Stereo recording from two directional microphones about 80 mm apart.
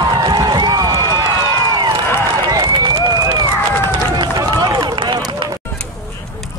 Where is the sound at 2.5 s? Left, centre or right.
Right.